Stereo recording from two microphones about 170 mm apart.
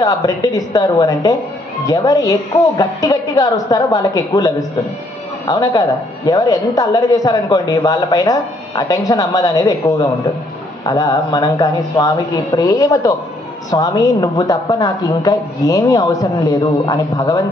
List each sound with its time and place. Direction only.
0.0 s a woman's voice: 20° left (ahead or behind)